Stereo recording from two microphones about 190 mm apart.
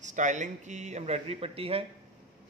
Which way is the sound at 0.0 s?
40° right (ahead or behind).